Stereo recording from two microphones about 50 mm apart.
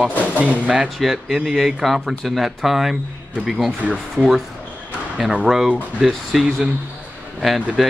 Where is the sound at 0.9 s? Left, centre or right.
Centre.